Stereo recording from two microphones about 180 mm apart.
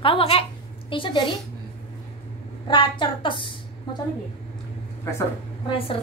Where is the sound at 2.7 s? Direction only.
30° left (ahead or behind).